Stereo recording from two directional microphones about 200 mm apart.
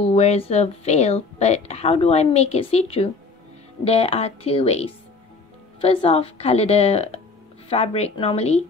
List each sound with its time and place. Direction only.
0.0 s a woman's voice: 30° left (ahead or behind)